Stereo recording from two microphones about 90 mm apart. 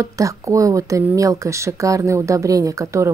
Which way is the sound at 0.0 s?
35° right (ahead or behind).